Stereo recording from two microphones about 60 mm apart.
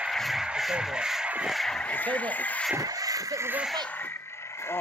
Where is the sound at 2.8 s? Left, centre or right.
Right.